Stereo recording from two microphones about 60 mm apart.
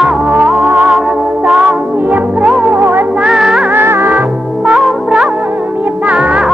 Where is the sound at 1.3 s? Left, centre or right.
Right.